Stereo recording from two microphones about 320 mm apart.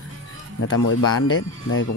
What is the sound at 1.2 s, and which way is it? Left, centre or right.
Speech, left.